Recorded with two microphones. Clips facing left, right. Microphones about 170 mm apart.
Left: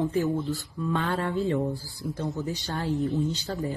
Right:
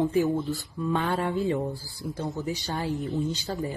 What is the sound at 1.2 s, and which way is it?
Speech, 15° right (ahead or behind).